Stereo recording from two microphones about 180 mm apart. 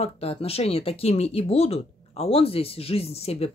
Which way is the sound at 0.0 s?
35° left (ahead or behind).